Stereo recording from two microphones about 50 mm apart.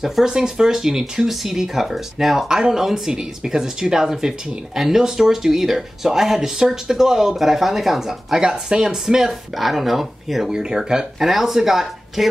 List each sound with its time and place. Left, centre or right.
0.0 s speech: centre
8.4 s speech: centre